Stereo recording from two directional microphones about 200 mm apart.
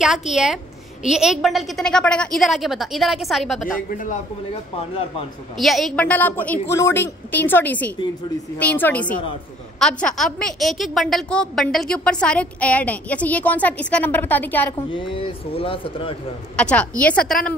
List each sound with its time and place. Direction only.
0.0 s a woman's voice: centre (ahead or behind)
5.6 s a woman's voice: centre (ahead or behind)
14.8 s speech: 25° left (ahead or behind)
16.5 s a woman's voice: 5° left (ahead or behind)